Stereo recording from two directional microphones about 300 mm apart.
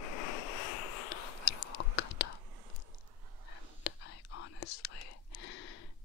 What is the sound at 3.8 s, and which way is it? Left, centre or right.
Whispering, left.